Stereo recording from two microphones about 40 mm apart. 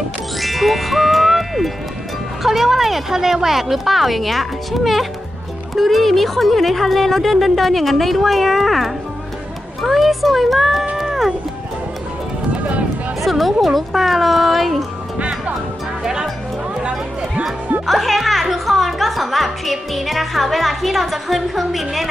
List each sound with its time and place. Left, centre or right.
0.4 s music: centre
2.4 s a woman's voice: centre
11.0 s music: centre
13.2 s a woman's voice: centre
15.1 s music: right
16.0 s speech: centre
17.8 s speech: centre